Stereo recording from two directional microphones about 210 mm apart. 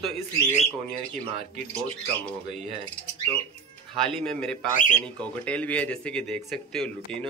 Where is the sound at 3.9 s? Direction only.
Centre (ahead or behind).